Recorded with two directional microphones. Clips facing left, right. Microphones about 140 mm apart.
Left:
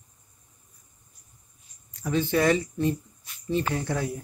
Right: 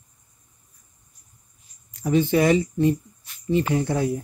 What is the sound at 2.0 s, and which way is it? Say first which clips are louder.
Speech: right 5 dB; 15° right (ahead or behind).